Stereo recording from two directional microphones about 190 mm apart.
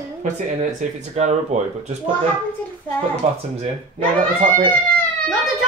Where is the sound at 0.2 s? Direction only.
40° right (ahead or behind).